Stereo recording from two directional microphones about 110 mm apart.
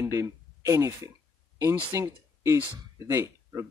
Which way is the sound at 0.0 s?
30° right (ahead or behind).